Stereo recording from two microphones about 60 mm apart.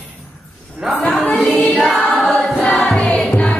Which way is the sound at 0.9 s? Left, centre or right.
Centre.